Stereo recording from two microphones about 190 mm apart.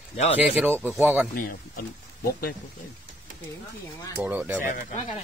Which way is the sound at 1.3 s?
50° left (ahead or behind).